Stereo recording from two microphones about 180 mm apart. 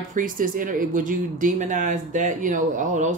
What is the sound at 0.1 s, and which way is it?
Speech, 50° right (ahead or behind).